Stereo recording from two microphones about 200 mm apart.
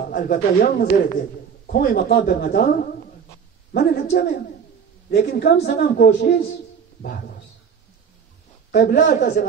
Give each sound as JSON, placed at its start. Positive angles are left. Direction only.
{"t": 0.1, "sound": "a woman's voice", "side_deg": 45}
{"t": 8.7, "sound": "speech", "side_deg": 55}